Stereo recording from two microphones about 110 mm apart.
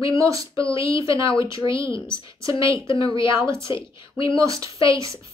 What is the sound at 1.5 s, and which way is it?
Speech, 50° left (ahead or behind).